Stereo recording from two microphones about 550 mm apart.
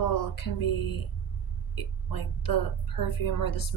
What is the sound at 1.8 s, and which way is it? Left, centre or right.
A woman's voice, left.